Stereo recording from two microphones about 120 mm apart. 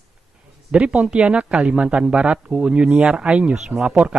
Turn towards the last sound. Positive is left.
turn(degrees=-10)  # may be behind; listen again after turning